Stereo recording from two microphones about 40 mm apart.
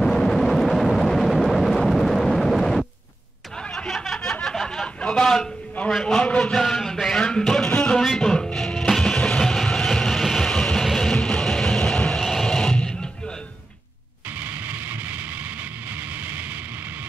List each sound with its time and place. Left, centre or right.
0.0 s vehicle: centre
3.7 s snicker: centre
4.8 s a sound: centre
7.2 s speech: centre
7.7 s music: left
9.4 s a sound: centre
9.8 s music: centre
10.4 s music: centre
11.1 s music: centre
12.2 s music: centre
12.4 s music: centre
14.4 s vehicle: right